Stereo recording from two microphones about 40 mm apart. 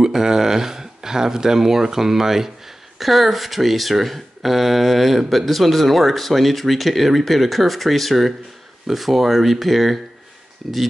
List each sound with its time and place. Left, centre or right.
0.0 s speech: centre